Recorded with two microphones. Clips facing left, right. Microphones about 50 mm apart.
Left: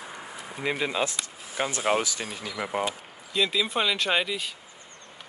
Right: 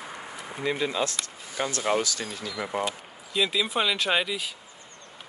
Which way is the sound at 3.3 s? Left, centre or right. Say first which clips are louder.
Even; centre.